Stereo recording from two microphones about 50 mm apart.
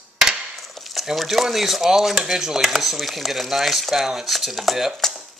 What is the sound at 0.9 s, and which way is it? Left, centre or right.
Speech, centre.